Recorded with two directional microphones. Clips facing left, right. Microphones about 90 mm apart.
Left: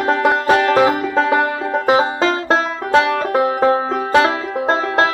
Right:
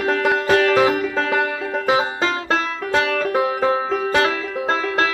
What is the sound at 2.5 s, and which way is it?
Music, 25° left (ahead or behind).